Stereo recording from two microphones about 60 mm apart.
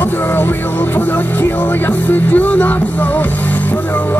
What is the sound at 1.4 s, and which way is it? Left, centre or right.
Music, left.